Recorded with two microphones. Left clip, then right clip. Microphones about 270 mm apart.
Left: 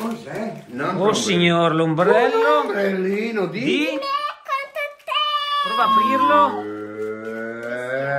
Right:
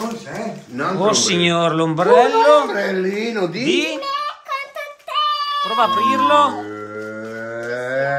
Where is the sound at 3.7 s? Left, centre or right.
Centre.